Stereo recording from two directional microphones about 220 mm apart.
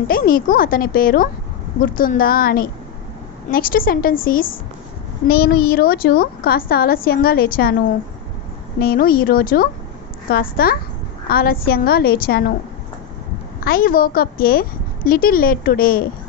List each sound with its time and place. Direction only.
0.1 s a woman's voice: 40° left (ahead or behind)
8.7 s a woman's voice: 45° left (ahead or behind)
13.6 s a woman's voice: 40° left (ahead or behind)